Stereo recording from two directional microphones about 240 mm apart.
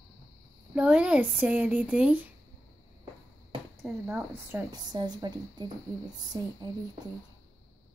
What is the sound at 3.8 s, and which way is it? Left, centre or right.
A woman's voice, centre.